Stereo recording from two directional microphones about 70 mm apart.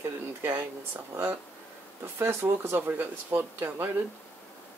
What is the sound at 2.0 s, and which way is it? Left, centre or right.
Speech, right.